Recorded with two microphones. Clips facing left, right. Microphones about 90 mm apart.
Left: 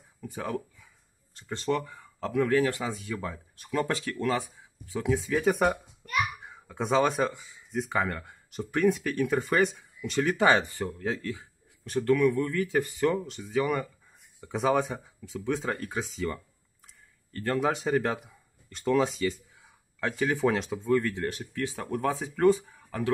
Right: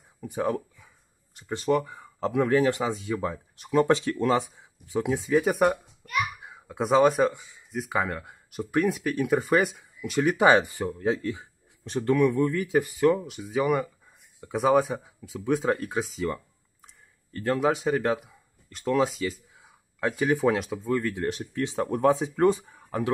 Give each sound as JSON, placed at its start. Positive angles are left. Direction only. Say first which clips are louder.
{"t": 0.2, "sound": "speech", "louder": "right 6 dB", "side_deg": -20}
{"t": 17.6, "sound": "speech", "louder": "right 1 dB", "side_deg": 0}
{"t": 21.2, "sound": "speech", "louder": "right 3 dB", "side_deg": -20}